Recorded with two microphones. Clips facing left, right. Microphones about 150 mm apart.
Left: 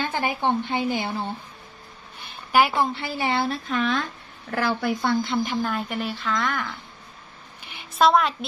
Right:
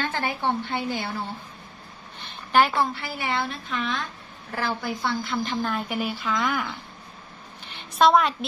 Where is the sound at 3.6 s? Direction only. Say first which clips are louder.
Left 5 dB; 45° left (ahead or behind).